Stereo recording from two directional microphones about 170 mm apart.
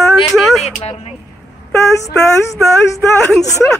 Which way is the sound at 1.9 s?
15° left (ahead or behind).